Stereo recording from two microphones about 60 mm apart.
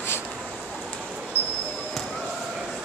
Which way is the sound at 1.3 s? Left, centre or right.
Left.